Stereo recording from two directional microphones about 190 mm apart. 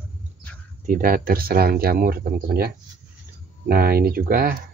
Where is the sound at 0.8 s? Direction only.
45° right (ahead or behind).